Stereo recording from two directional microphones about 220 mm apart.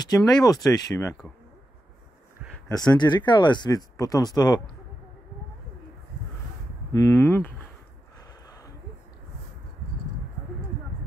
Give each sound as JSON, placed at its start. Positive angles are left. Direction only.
{"t": 0.0, "sound": "speech", "side_deg": 15}
{"t": 2.7, "sound": "speech", "side_deg": 20}
{"t": 6.9, "sound": "speech", "side_deg": 15}
{"t": 8.5, "sound": "a sound", "side_deg": 15}